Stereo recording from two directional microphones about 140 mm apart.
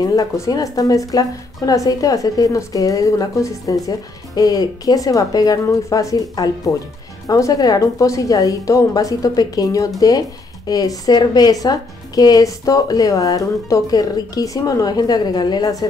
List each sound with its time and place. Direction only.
0.0 s speech: 25° left (ahead or behind)